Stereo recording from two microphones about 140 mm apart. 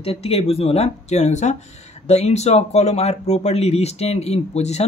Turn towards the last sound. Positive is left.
turn(degrees=50)  # may be behind; listen again after turning